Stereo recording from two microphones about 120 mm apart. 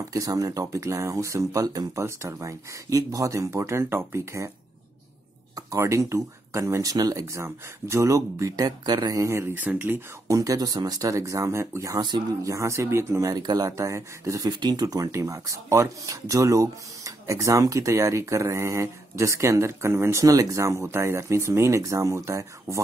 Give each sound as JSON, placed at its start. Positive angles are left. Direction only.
{"t": 0.0, "sound": "speech", "side_deg": -30}
{"t": 5.7, "sound": "speech", "side_deg": -25}